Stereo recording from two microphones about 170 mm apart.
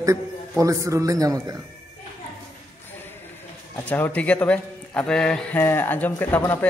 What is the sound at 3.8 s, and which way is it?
A man's voice, 10° left (ahead or behind).